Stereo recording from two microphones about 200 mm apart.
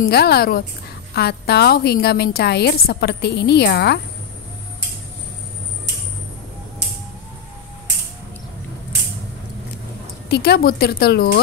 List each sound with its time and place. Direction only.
0.1 s a woman's voice: 50° left (ahead or behind)
10.3 s a woman's voice: 55° left (ahead or behind)